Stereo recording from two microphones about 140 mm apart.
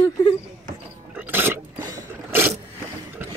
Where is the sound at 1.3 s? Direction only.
15° right (ahead or behind).